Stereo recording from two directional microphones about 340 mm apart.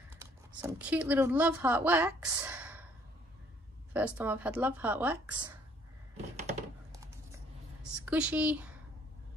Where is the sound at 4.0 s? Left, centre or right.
Centre.